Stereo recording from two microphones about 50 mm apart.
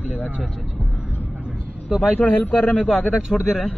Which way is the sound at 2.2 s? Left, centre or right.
Left.